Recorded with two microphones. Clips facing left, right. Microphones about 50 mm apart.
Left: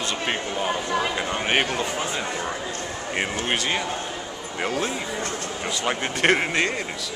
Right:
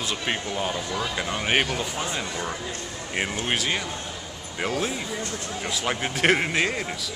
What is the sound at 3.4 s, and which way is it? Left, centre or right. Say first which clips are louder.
Speech: left 2 dB; centre.